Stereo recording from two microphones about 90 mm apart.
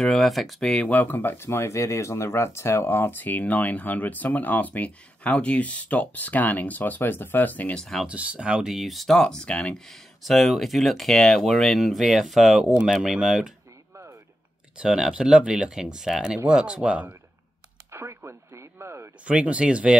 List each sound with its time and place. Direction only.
0.0 s speech: centre (ahead or behind); by 7.8 s 20° left (ahead or behind)
7.8 s speech: 5° left (ahead or behind)
8.1 s speech: 15° right (ahead or behind)
14.8 s speech: 10° right (ahead or behind)
17.9 s radio: 30° right (ahead or behind)
19.2 s speech: 15° right (ahead or behind)